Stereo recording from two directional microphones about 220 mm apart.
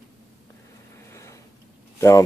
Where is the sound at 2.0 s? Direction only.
15° left (ahead or behind).